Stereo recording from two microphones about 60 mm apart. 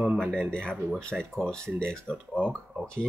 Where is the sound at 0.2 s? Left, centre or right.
Centre.